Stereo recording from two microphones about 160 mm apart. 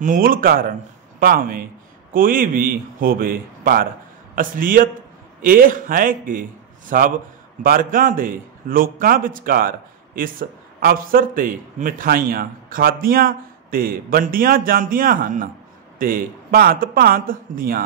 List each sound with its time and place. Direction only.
0.0 s a man's voice: 55° right (ahead or behind)